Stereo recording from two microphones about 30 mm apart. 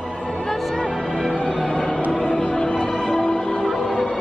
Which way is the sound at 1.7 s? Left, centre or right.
Left.